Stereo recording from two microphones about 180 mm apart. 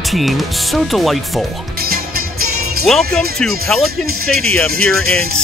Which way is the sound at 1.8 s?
55° right (ahead or behind).